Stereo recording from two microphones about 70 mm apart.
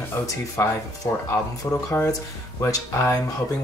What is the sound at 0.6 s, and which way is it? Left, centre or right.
Speech, left.